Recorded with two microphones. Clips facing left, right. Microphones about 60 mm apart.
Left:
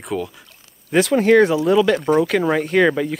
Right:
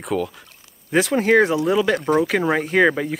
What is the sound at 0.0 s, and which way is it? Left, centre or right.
Speech, centre.